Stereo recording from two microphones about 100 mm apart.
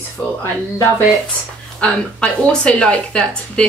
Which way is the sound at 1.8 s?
10° left (ahead or behind).